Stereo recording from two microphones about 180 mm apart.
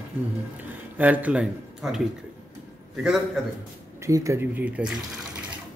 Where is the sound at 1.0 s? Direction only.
10° right (ahead or behind).